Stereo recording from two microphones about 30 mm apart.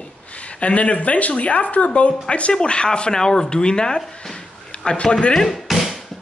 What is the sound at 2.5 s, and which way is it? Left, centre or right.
Speech, left.